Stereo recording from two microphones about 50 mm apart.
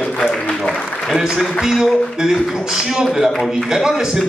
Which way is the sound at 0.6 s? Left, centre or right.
Centre.